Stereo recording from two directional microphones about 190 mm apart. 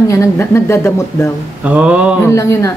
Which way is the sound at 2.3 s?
15° left (ahead or behind).